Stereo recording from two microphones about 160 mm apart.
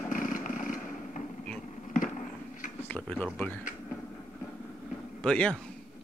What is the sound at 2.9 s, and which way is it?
Speech, 10° left (ahead or behind).